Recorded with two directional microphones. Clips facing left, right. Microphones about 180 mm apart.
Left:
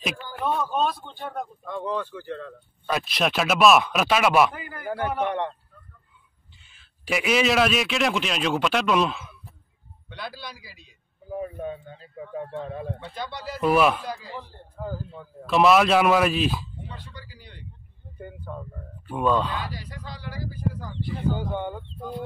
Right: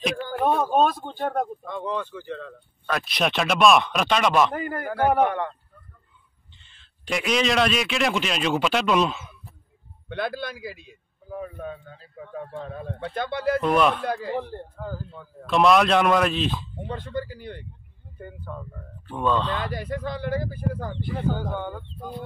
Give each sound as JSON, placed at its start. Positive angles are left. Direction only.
{"t": 0.2, "sound": "speech", "side_deg": -50}
{"t": 1.7, "sound": "speech", "side_deg": 5}
{"t": 4.6, "sound": "speech", "side_deg": -50}
{"t": 6.6, "sound": "a man's voice", "side_deg": 5}
{"t": 10.0, "sound": "speech", "side_deg": -55}
{"t": 11.3, "sound": "speech", "side_deg": 20}
{"t": 13.0, "sound": "speech", "side_deg": -55}
{"t": 13.6, "sound": "speech", "side_deg": 5}
{"t": 14.0, "sound": "speech", "side_deg": -60}
{"t": 14.8, "sound": "speech", "side_deg": 10}
{"t": 16.8, "sound": "speech", "side_deg": -50}
{"t": 18.2, "sound": "speech", "side_deg": 15}
{"t": 19.7, "sound": "speech", "side_deg": -55}
{"t": 21.4, "sound": "speech", "side_deg": 15}